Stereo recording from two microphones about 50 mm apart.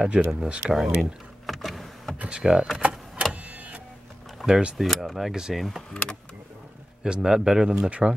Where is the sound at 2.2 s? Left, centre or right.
Centre.